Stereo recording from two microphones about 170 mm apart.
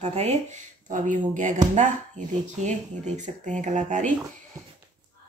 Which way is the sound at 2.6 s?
45° right (ahead or behind).